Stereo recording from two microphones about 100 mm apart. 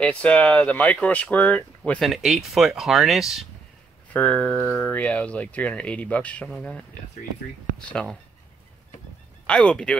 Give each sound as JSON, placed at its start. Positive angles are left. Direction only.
{"t": 0.0, "sound": "speech", "side_deg": 15}
{"t": 2.0, "sound": "speech", "side_deg": 0}
{"t": 4.1, "sound": "speech", "side_deg": 10}
{"t": 7.8, "sound": "speech", "side_deg": 10}
{"t": 9.5, "sound": "speech", "side_deg": 10}